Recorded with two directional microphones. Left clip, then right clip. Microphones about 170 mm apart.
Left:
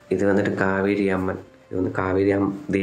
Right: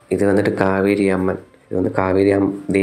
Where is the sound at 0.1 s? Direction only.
30° right (ahead or behind).